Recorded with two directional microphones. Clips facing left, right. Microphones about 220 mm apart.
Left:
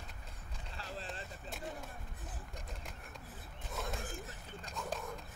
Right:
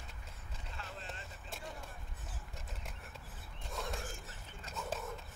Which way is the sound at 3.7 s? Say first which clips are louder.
Left 1 dB; centre (ahead or behind).